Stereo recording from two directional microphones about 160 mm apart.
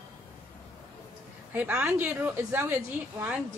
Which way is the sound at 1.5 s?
10° right (ahead or behind).